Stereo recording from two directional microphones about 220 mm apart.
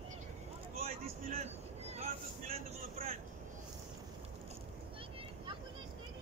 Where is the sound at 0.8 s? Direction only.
30° right (ahead or behind).